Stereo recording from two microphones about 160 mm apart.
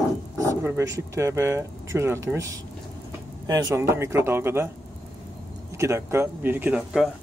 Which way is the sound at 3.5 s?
20° right (ahead or behind).